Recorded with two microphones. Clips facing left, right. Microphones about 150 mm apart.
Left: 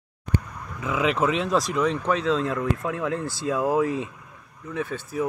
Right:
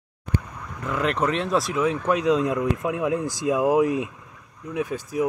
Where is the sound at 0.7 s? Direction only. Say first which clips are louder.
Left 1 dB; 5° left (ahead or behind).